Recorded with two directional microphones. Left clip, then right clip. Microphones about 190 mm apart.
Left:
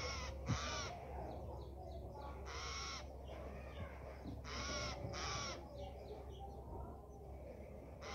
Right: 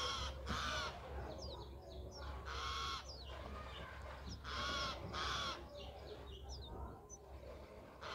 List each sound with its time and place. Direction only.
0.0 s crow: 25° left (ahead or behind)
2.4 s bird: 20° left (ahead or behind)
4.5 s crow: 20° left (ahead or behind)